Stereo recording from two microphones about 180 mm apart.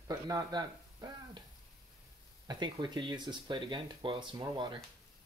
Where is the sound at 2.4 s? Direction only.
25° right (ahead or behind).